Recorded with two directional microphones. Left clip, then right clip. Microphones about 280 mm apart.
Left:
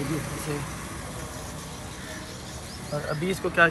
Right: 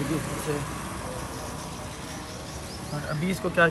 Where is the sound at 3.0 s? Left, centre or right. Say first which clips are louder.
Left 1 dB; centre.